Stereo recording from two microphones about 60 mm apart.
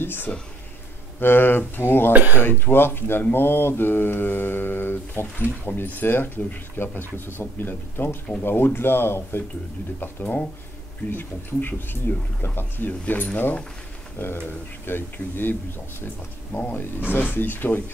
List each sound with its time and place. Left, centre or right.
0.0 s speech: left
2.1 s speech: right
2.4 s speech: left
17.1 s speech: left